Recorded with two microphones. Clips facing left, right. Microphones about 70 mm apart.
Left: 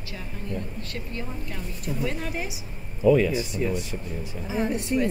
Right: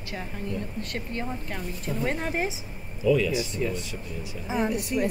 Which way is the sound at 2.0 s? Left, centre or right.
Right.